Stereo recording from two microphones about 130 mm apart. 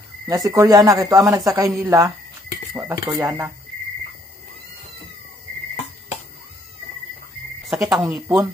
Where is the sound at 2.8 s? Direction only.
20° right (ahead or behind).